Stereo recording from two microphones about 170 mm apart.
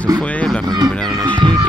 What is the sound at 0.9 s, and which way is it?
Speech, 5° left (ahead or behind).